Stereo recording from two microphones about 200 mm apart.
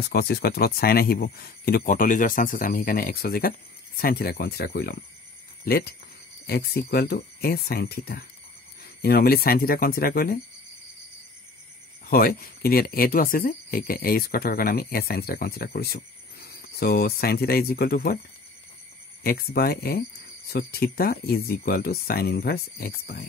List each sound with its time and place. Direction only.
0.1 s speech: 50° left (ahead or behind)
6.4 s speech: 50° left (ahead or behind)
12.1 s speech: 45° left (ahead or behind)
19.2 s speech: 50° left (ahead or behind)